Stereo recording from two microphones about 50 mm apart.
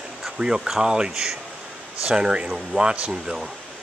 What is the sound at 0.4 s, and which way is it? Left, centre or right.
Speech, centre.